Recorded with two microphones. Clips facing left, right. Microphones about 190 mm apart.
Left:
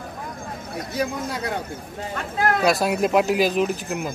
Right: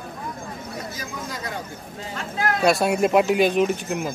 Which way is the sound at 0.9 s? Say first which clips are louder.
Left 7 dB; 65° left (ahead or behind).